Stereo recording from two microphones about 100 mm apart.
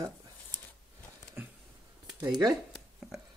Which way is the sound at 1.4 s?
20° right (ahead or behind).